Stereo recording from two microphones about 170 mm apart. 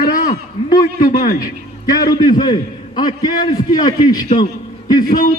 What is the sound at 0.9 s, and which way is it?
Speech, 50° left (ahead or behind).